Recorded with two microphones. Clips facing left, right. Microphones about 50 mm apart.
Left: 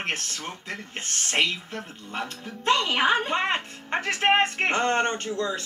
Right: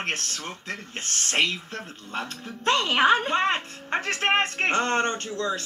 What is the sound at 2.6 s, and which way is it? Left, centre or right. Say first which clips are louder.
Speech: right 2 dB; right.